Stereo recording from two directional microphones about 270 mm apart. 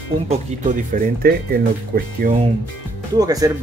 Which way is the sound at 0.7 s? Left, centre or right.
Right.